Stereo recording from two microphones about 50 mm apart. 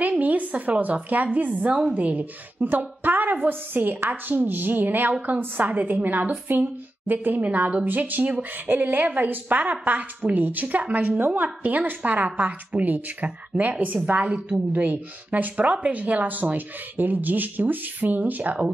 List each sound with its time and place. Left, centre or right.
0.2 s a woman's voice: right